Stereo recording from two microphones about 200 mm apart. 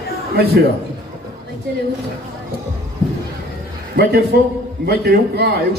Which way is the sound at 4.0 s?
55° right (ahead or behind).